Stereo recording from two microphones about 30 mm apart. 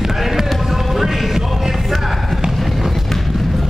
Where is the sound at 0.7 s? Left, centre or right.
Centre.